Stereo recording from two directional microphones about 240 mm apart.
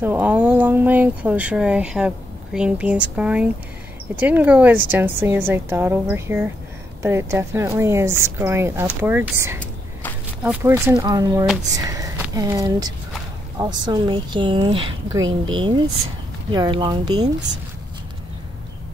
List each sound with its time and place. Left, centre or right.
0.0 s a woman's voice: centre